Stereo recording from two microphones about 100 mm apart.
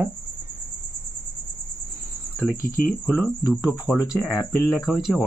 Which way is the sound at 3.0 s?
15° left (ahead or behind).